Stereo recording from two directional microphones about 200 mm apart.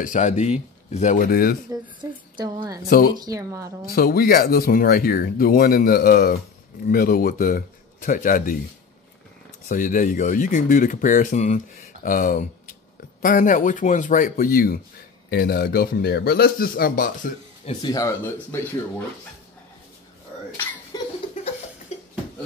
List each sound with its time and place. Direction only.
0.0 s speech: 40° left (ahead or behind)
1.7 s a woman's voice: 20° right (ahead or behind)
3.9 s speech: 50° left (ahead or behind)
9.7 s speech: 40° left (ahead or behind)
17.6 s speech: 20° left (ahead or behind)
20.9 s laughter: 20° left (ahead or behind)
21.9 s a sound: 35° left (ahead or behind)